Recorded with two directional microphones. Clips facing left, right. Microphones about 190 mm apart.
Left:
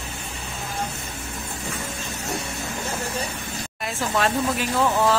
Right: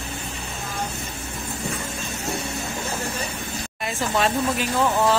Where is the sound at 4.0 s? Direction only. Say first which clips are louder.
Even; centre (ahead or behind).